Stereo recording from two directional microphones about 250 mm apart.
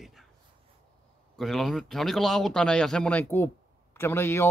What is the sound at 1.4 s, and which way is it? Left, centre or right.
Speech, centre.